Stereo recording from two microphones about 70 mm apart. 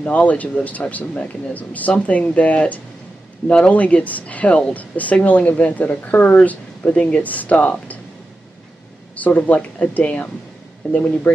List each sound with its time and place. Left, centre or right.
0.0 s speech: left
9.1 s speech: left